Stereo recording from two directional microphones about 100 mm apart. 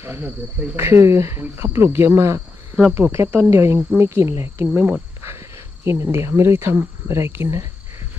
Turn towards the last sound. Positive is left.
turn(degrees=-25)  # may be behind; listen again after turning